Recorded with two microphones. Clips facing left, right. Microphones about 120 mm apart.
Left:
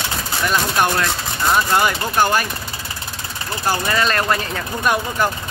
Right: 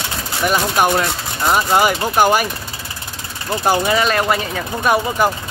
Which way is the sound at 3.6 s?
10° right (ahead or behind).